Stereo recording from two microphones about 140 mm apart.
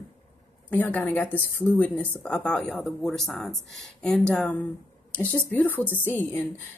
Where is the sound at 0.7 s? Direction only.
10° left (ahead or behind).